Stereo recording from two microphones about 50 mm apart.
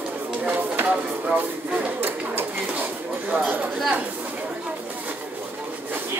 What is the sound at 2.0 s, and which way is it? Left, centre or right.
Sewing machine, right.